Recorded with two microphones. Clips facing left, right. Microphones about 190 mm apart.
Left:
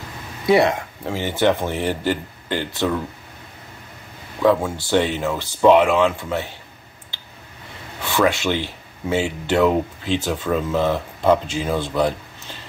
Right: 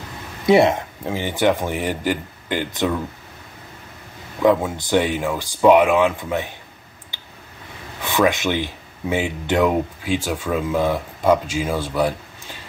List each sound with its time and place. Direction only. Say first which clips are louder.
0.5 s speech: right 2 dB; 20° right (ahead or behind)
4.6 s speech: even; 15° right (ahead or behind)
8.0 s speech: right 1 dB; 15° right (ahead or behind)